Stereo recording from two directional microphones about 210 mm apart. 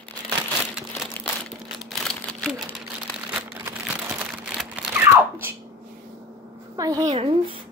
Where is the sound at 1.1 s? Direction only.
5° left (ahead or behind); by 5.5 s 10° right (ahead or behind).